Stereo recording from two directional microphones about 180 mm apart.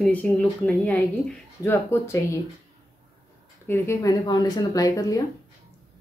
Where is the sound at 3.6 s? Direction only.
15° left (ahead or behind).